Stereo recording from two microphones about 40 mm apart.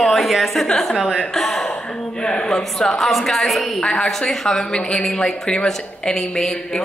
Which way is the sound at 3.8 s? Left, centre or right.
Centre.